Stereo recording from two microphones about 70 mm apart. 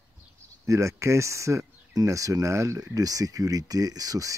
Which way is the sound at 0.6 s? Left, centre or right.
Right.